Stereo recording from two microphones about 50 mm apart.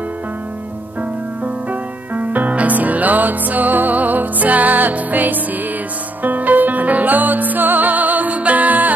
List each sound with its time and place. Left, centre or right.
1.4 s music: right